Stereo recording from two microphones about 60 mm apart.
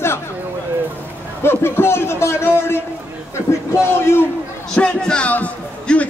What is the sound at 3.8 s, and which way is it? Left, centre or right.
Speech, left.